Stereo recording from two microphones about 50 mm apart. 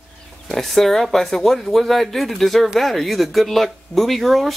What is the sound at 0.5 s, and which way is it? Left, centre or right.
Speech, centre.